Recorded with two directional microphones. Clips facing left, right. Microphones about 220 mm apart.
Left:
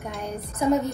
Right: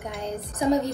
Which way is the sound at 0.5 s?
15° right (ahead or behind).